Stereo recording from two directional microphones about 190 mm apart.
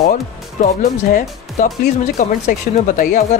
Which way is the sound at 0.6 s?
45° left (ahead or behind).